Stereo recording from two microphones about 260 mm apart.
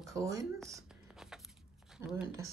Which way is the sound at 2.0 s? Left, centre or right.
Centre.